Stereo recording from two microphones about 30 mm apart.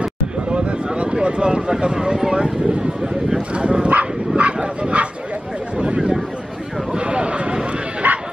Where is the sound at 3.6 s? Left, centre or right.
Right.